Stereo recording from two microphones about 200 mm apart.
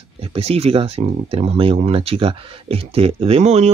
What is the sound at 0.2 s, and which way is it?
Speech, 30° right (ahead or behind).